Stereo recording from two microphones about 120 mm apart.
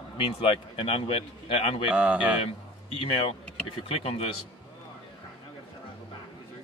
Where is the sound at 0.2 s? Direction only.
50° left (ahead or behind).